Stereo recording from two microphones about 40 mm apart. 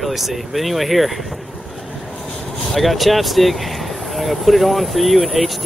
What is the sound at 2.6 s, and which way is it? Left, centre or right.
Speech, centre.